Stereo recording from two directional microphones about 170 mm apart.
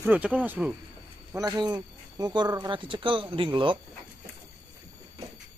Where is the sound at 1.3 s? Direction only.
20° right (ahead or behind).